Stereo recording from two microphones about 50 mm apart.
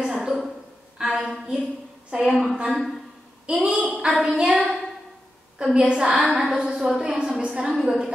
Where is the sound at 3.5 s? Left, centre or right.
Right.